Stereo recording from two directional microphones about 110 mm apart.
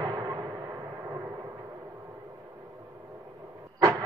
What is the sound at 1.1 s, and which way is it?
Thunder, 25° right (ahead or behind).